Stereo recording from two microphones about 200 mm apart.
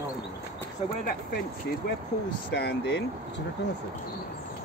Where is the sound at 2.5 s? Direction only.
60° left (ahead or behind).